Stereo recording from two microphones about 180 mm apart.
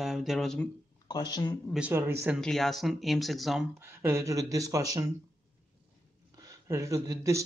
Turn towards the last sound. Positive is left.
turn(degrees=-15)  # may be behind; listen again after turning